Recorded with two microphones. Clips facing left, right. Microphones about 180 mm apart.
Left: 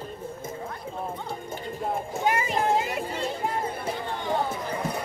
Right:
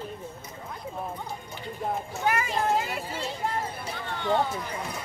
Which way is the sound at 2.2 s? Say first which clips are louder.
Left 2 dB; 20° left (ahead or behind).